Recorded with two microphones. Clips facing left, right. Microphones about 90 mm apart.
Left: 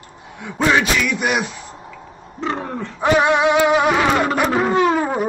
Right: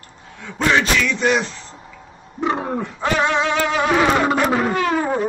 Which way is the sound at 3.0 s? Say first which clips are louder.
Left 5 dB; 15° left (ahead or behind).